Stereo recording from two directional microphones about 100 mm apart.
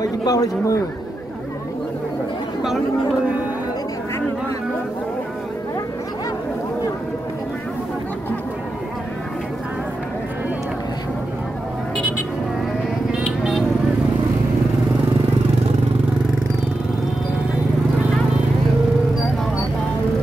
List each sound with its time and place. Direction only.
0.0 s speech: 40° left (ahead or behind)
13.2 s vehicle: centre (ahead or behind)